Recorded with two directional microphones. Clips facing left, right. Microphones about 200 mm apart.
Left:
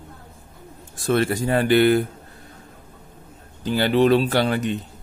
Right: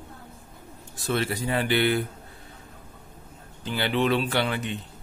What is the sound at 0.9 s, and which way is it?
Speech, 50° left (ahead or behind).